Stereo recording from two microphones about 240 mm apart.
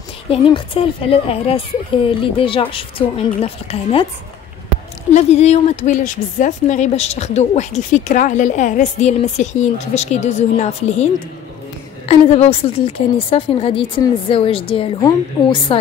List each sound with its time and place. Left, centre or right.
0.3 s a woman's voice: left
5.1 s a woman's voice: left
12.1 s a woman's voice: left